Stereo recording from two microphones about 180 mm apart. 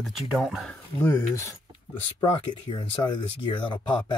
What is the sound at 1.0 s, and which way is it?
Speech, 15° left (ahead or behind).